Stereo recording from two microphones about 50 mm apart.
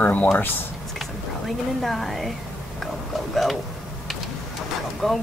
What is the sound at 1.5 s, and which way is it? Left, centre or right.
Speech, centre.